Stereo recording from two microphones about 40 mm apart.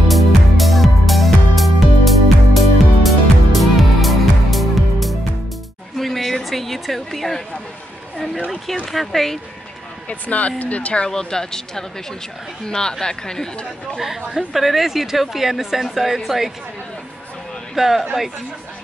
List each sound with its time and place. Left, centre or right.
0.1 s music: centre
5.9 s a sound: centre
8.8 s a woman's voice: centre
10.0 s speech: left
11.1 s speech: centre
13.9 s a woman's voice: centre
17.7 s a woman's voice: centre